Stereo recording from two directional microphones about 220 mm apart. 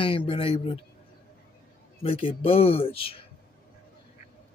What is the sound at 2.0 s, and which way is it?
Speech, 25° left (ahead or behind).